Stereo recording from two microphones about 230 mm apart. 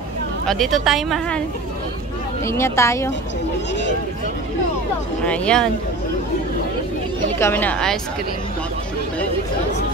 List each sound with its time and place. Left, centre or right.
0.5 s a woman's voice: centre
2.4 s speech: centre
5.2 s a woman's voice: centre
7.3 s speech: centre